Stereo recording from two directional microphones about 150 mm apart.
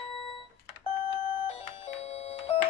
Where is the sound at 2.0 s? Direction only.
45° left (ahead or behind).